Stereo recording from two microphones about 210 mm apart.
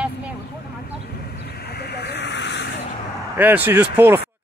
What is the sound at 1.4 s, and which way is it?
Vehicle, 50° left (ahead or behind).